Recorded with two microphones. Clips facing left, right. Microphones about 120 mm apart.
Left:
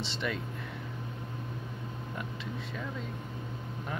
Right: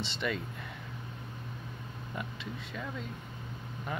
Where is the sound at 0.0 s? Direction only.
Centre (ahead or behind).